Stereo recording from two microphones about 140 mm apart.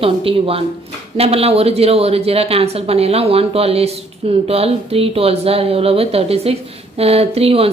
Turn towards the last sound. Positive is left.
turn(degrees=-45)  # may be behind; listen again after turning